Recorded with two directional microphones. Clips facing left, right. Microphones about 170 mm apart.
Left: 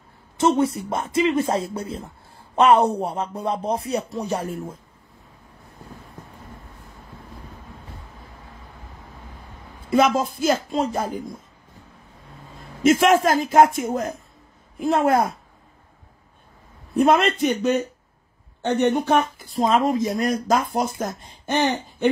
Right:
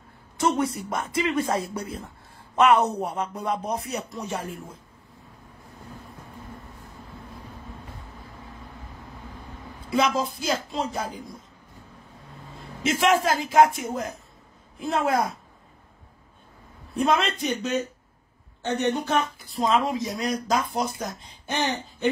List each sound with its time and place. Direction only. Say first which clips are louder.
0.4 s speech: left 5 dB; 25° left (ahead or behind); by 4.7 s 40° left (ahead or behind)
9.8 s a woman's voice: left 5 dB; 50° left (ahead or behind)
12.8 s speech: left 6 dB; 50° left (ahead or behind)
17.0 s speech: left 6 dB; 55° left (ahead or behind)